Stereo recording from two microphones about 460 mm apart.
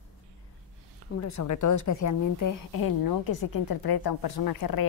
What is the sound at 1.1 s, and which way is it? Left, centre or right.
A woman's voice, left.